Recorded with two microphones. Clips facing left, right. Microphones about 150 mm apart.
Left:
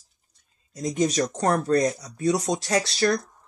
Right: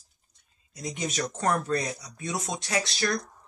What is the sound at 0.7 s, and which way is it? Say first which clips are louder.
Speech: left 9 dB; 40° left (ahead or behind).